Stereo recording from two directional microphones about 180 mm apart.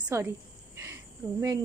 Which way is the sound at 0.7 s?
15° right (ahead or behind).